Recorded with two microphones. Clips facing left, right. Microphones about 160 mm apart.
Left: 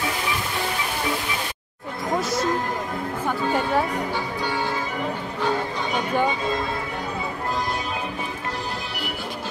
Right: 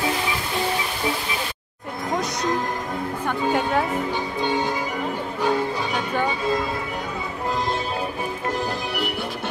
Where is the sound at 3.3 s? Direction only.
Centre (ahead or behind).